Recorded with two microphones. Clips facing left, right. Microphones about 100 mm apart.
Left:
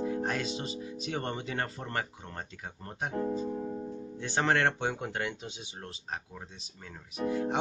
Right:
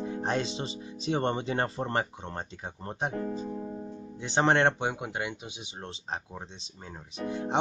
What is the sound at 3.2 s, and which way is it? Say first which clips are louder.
Speech: left 2 dB; 50° left (ahead or behind).